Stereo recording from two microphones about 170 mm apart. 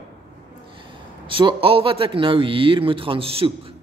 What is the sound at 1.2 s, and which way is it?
A man's voice, 30° right (ahead or behind).